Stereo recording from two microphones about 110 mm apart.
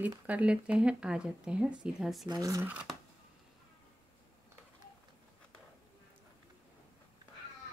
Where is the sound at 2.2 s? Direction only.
35° right (ahead or behind).